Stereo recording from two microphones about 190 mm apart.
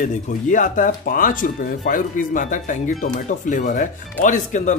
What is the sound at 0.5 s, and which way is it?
Speech, 45° left (ahead or behind).